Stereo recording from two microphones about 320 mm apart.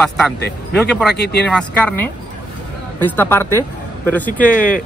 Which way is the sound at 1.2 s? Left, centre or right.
Left.